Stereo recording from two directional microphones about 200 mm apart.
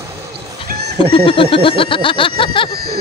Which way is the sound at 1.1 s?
25° left (ahead or behind).